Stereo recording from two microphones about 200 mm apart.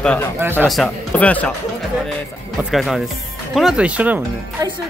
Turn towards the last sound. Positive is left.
turn(degrees=-5)  # may be behind; listen again after turning